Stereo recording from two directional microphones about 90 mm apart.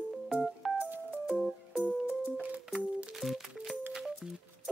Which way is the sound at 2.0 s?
20° right (ahead or behind).